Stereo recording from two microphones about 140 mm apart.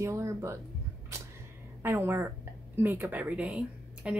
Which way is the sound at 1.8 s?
15° right (ahead or behind).